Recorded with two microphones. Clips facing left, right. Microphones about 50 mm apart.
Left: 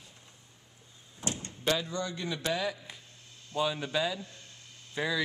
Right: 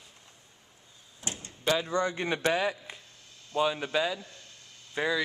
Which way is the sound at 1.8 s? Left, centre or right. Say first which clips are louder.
Right 6 dB; right.